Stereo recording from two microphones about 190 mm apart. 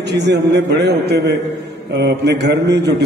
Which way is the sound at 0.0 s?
65° right (ahead or behind).